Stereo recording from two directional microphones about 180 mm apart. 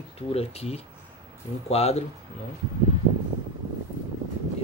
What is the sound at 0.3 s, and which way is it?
Speech, 35° left (ahead or behind).